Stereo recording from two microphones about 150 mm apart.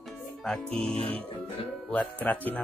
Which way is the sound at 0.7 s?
40° right (ahead or behind).